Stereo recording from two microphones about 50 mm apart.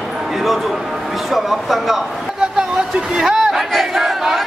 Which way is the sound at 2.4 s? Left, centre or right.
Centre.